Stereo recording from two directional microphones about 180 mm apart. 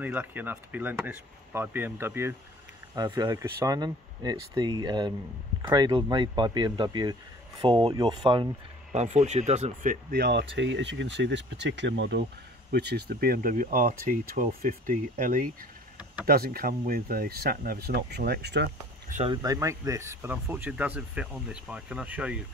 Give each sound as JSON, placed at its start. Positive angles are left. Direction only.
{"t": 0.0, "sound": "speech", "side_deg": -10}
{"t": 8.9, "sound": "speech", "side_deg": -40}
{"t": 10.1, "sound": "speech", "side_deg": -65}
{"t": 12.7, "sound": "speech", "side_deg": -65}
{"t": 19.2, "sound": "speech", "side_deg": -20}